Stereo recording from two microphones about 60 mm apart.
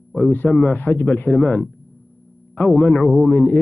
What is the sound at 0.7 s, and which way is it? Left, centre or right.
A man's voice, left.